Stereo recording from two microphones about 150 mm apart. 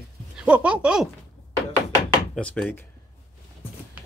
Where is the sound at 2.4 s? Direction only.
10° left (ahead or behind).